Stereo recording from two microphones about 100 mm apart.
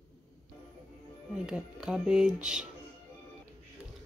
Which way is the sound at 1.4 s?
10° right (ahead or behind).